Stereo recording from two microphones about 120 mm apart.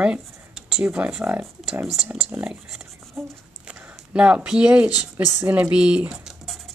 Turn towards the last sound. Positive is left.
turn(degrees=-5)  # may be behind; listen again after turning